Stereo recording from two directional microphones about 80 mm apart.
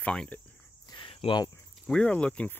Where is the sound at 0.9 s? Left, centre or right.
Left.